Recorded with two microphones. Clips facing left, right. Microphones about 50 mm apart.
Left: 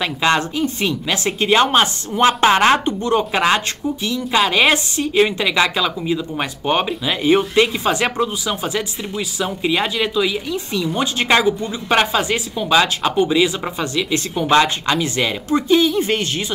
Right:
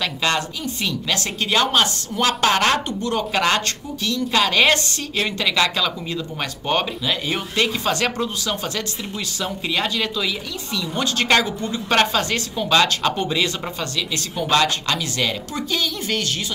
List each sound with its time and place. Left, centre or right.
0.0 s a woman's voice: left
1.0 s a woman's voice: left